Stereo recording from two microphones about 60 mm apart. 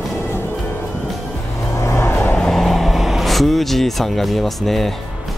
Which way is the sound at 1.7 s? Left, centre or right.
Left.